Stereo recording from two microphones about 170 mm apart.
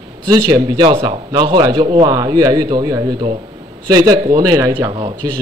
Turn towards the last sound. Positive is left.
turn(degrees=-25)  # may be behind; listen again after turning